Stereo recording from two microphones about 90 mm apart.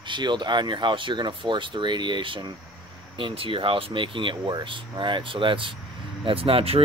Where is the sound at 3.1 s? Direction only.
80° right.